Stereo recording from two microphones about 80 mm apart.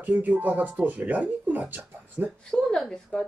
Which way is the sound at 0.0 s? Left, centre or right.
Centre.